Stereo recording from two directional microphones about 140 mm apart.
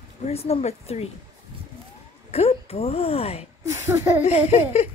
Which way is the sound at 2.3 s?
45° left (ahead or behind).